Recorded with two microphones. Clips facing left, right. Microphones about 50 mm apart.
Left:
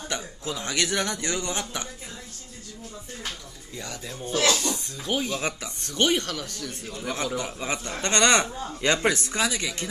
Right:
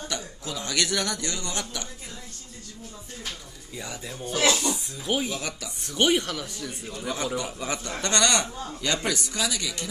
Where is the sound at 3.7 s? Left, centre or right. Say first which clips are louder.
Even; centre.